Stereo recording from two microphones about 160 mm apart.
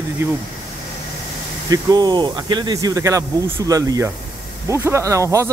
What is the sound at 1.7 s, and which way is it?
Speech, 25° right (ahead or behind).